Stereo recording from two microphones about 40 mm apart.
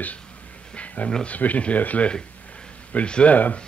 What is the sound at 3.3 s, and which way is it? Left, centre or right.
Speech, left.